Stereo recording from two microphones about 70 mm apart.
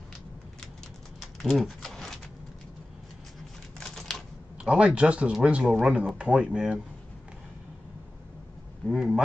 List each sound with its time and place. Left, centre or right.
1.2 s a sound: centre
3.8 s typewriter: centre
4.6 s speech: centre
8.8 s speech: centre